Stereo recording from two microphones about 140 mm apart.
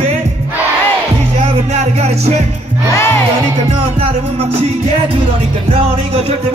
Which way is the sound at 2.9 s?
20° left (ahead or behind).